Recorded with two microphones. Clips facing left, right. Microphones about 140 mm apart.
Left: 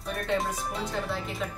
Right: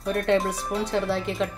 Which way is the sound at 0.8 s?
80° right.